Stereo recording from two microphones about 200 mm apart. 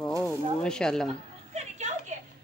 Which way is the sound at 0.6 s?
5° left (ahead or behind).